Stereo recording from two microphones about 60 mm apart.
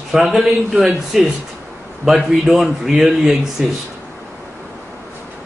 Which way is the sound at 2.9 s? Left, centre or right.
Centre.